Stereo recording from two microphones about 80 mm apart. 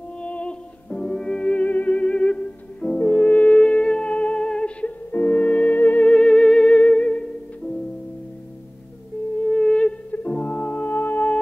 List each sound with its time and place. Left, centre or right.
0.2 s music: centre
9.4 s music: centre